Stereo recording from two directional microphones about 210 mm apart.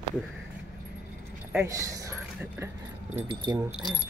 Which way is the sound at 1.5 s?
10° right (ahead or behind).